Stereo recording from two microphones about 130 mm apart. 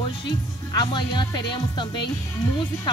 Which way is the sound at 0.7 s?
35° left (ahead or behind).